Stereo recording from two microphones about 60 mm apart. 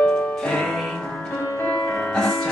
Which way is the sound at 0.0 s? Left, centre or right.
Centre.